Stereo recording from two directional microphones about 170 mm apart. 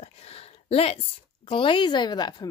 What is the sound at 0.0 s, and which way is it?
A woman's voice, 35° left (ahead or behind).